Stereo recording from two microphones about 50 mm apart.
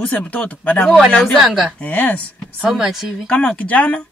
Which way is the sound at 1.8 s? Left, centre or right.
Left.